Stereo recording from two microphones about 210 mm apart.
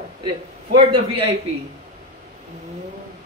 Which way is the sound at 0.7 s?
25° right (ahead or behind).